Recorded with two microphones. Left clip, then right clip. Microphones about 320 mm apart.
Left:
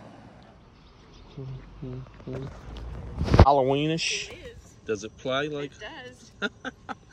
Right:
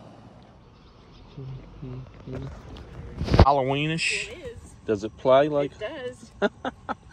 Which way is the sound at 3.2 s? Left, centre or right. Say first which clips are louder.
Even; centre.